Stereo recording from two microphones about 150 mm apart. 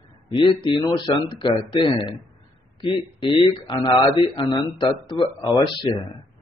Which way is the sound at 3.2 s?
30° left (ahead or behind).